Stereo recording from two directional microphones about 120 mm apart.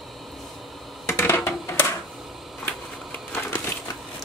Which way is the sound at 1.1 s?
20° left (ahead or behind).